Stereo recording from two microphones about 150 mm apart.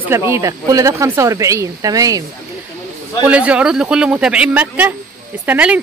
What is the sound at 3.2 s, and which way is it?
Speech, 10° right (ahead or behind).